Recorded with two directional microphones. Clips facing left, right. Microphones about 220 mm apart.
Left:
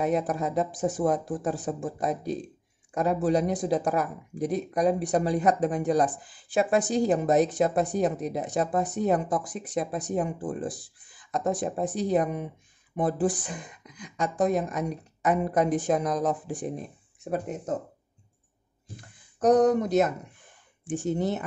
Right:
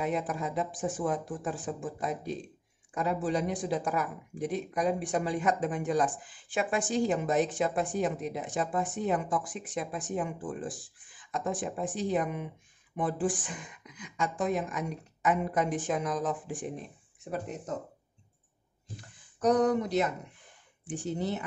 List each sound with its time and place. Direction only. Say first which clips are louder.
0.0 s speech: left 5 dB; 40° left (ahead or behind)
19.4 s speech: left 5 dB; 45° left (ahead or behind)